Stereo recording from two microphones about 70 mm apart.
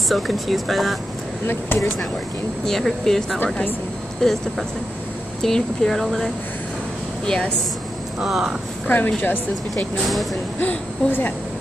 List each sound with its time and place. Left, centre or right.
0.1 s speech: centre
2.6 s speech: centre
8.2 s speech: centre
8.8 s a woman's voice: left